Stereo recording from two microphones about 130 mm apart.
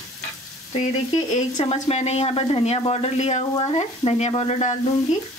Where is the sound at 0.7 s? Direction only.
55° left (ahead or behind).